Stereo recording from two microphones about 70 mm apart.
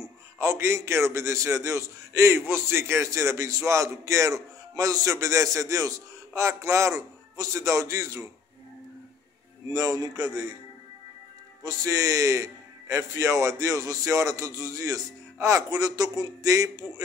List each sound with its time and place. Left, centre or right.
0.4 s a man's voice: right
9.7 s a man's voice: right
11.6 s a man's voice: right